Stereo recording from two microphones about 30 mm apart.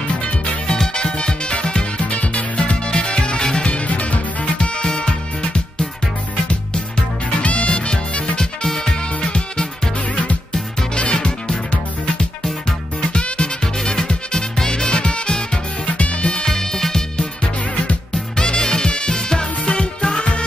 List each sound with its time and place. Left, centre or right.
0.9 s music: left
2.0 s music: left
3.8 s music: left
4.6 s music: left
7.4 s music: left
8.4 s music: centre
11.0 s music: left
13.9 s music: centre
14.9 s music: left
16.0 s music: left
16.4 s music: centre
18.3 s music: left
19.1 s music: left